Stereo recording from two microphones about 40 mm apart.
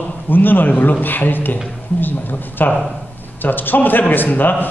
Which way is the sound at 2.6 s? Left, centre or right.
Left.